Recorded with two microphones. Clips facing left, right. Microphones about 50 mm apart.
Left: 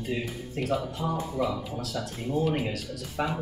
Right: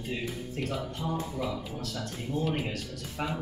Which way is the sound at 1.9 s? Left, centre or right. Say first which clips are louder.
Left 5 dB; centre.